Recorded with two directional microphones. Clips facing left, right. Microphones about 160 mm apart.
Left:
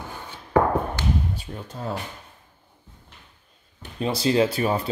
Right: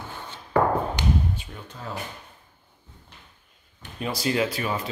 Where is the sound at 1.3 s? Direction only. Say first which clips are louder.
Left 3 dB; 40° left (ahead or behind).